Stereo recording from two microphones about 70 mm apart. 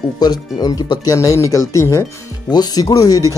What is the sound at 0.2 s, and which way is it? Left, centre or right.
Speech, left.